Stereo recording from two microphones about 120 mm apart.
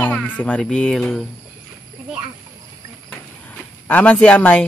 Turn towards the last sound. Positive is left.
turn(degrees=15)  # may be behind; listen again after turning